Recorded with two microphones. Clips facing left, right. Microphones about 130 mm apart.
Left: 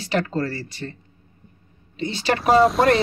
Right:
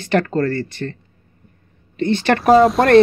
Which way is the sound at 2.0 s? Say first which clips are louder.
Right 6 dB; 55° right (ahead or behind).